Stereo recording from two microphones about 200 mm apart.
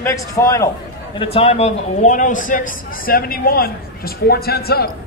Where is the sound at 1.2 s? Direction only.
30° left (ahead or behind); by 4.9 s 50° left (ahead or behind).